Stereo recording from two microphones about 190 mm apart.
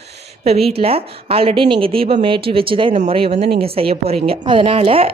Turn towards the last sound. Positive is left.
turn(degrees=-30)  # may be behind; listen again after turning